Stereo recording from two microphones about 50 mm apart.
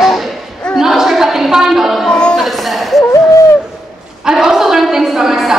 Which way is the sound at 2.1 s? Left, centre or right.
Centre.